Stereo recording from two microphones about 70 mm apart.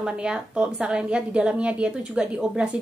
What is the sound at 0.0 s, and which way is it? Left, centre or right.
A woman's voice, centre.